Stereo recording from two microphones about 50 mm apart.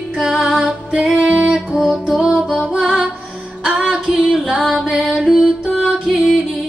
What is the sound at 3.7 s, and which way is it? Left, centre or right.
Female singing, centre.